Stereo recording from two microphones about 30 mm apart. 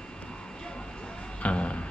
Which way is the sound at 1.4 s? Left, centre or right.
Left.